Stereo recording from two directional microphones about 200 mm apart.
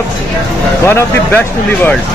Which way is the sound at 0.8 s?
10° left (ahead or behind).